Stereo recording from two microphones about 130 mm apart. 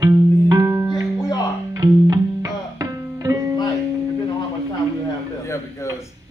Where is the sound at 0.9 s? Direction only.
30° left (ahead or behind).